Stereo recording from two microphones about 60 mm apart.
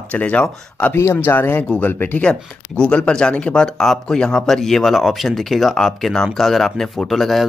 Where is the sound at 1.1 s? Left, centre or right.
Left.